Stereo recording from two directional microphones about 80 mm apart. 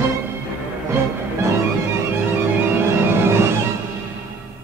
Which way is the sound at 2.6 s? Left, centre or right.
Right.